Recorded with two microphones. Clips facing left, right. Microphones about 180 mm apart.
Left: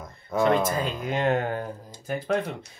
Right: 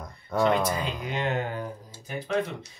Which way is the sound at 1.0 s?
50° left (ahead or behind).